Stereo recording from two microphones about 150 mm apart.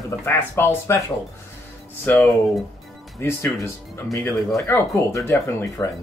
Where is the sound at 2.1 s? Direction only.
15° left (ahead or behind).